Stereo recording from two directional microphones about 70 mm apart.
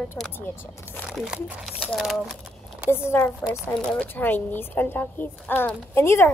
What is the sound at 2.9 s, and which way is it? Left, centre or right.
A child's voice, left.